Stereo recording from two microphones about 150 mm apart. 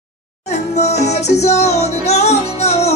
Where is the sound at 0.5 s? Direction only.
50° left (ahead or behind).